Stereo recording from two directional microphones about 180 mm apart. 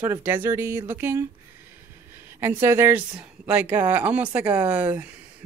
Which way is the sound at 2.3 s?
15° right (ahead or behind).